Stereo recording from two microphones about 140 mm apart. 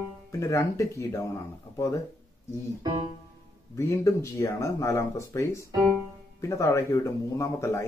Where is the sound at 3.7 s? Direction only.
20° left (ahead or behind).